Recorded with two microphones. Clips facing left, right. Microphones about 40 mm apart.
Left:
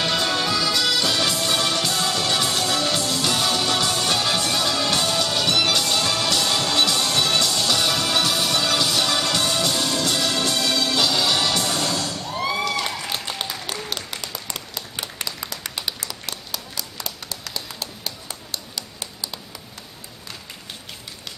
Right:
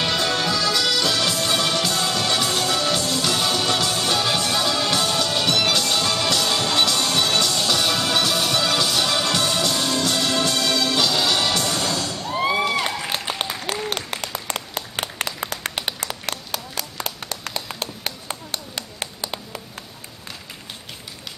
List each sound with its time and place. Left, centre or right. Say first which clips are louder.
0.0 s music: even; centre
12.3 s music: right 4 dB; right
13.1 s applause: right 2 dB; right
13.4 s applause: right 3 dB; right